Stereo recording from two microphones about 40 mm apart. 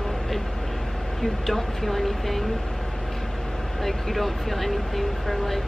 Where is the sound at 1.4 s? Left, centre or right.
Centre.